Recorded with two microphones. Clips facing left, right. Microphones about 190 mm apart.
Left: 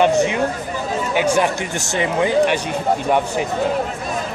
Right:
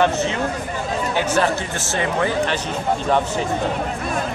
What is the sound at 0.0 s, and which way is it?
Speech, 15° left (ahead or behind).